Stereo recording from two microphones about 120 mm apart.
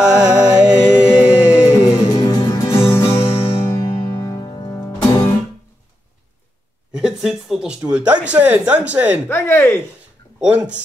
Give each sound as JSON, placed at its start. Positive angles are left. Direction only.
{"t": 0.0, "sound": "music", "side_deg": -5}
{"t": 1.6, "sound": "music", "side_deg": 30}
{"t": 3.2, "sound": "music", "side_deg": 50}
{"t": 3.6, "sound": "music", "side_deg": 30}
{"t": 6.9, "sound": "speech", "side_deg": -5}
{"t": 9.3, "sound": "speech", "side_deg": 20}